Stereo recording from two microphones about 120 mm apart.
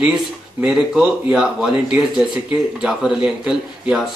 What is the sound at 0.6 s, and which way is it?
Speech, 5° right (ahead or behind).